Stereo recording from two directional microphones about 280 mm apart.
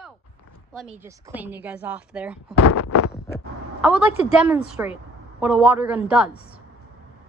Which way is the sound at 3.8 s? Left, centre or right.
Centre.